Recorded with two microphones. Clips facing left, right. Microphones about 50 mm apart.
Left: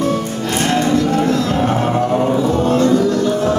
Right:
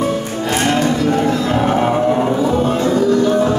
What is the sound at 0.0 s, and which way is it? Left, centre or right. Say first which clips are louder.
Music: even; centre.